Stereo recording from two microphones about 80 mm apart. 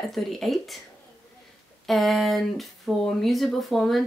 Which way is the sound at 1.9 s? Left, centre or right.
Centre.